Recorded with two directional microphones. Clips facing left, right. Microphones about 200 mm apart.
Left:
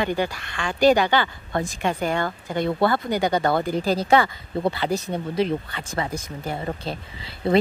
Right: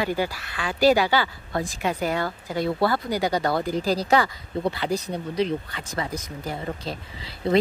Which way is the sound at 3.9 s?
25° left (ahead or behind).